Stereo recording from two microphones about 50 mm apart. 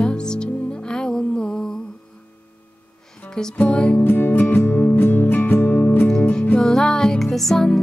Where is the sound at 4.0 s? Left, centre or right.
Left.